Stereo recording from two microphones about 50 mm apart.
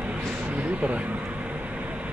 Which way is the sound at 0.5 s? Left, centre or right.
Right.